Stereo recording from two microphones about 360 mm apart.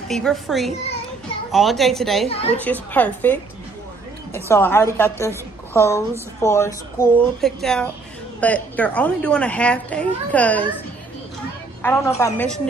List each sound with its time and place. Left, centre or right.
0.1 s speech: centre
2.2 s a woman's voice: centre
2.5 s a woman's voice: centre
11.8 s speech: centre